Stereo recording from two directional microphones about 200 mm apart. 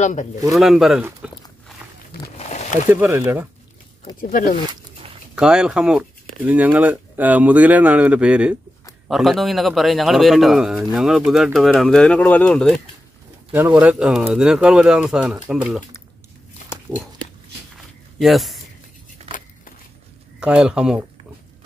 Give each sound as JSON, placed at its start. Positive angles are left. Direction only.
{"t": 0.0, "sound": "speech", "side_deg": 40}
{"t": 0.5, "sound": "a man's voice", "side_deg": 0}
{"t": 2.3, "sound": "a sound", "side_deg": 35}
{"t": 2.9, "sound": "speech", "side_deg": -10}
{"t": 4.2, "sound": "speech", "side_deg": 40}
{"t": 5.3, "sound": "a man's voice", "side_deg": -5}
{"t": 13.5, "sound": "a man's voice", "side_deg": -10}
{"t": 16.9, "sound": "a man's voice", "side_deg": 0}
{"t": 18.2, "sound": "a man's voice", "side_deg": 0}
{"t": 19.3, "sound": "a sound", "side_deg": -25}
{"t": 20.3, "sound": "a man's voice", "side_deg": -5}